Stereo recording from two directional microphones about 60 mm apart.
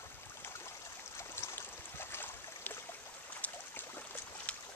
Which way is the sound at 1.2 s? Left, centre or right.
Left.